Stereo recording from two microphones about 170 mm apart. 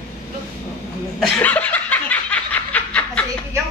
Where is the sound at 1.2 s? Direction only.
5° left (ahead or behind).